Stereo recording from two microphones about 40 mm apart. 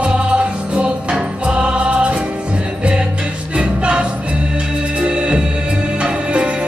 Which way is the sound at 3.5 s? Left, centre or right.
Right.